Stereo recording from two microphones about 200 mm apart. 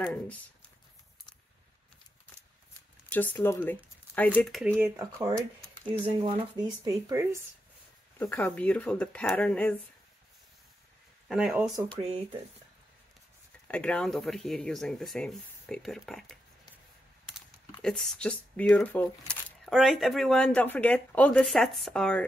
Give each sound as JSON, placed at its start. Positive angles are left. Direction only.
{"t": 0.0, "sound": "speech", "side_deg": 5}
{"t": 3.1, "sound": "speech", "side_deg": 10}
{"t": 4.8, "sound": "speech", "side_deg": -10}
{"t": 6.2, "sound": "speech", "side_deg": -25}
{"t": 8.2, "sound": "speech", "side_deg": 10}
{"t": 11.2, "sound": "speech", "side_deg": -5}
{"t": 13.7, "sound": "speech", "side_deg": 5}
{"t": 17.8, "sound": "speech", "side_deg": 0}